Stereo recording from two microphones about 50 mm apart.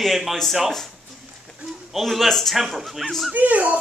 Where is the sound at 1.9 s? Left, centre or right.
Centre.